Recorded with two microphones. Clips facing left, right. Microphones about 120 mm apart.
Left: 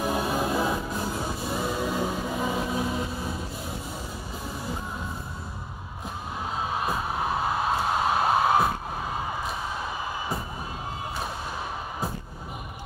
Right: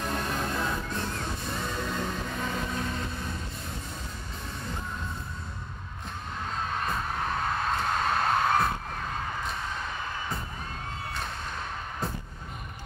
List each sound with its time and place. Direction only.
0.0 s music: 10° left (ahead or behind)
6.5 s music: 10° left (ahead or behind)